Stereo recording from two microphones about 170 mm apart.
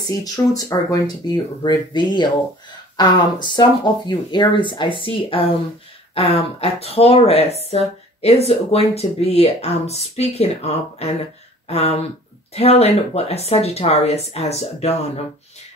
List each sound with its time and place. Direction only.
0.0 s speech: 20° left (ahead or behind); by 15.0 s 40° left (ahead or behind)